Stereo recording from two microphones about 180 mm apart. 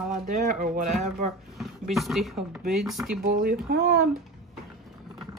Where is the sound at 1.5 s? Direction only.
Centre (ahead or behind).